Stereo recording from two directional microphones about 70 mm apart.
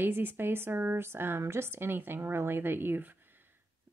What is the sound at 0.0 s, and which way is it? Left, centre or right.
Speech, right.